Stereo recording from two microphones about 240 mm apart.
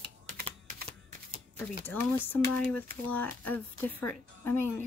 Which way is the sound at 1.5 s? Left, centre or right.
Centre.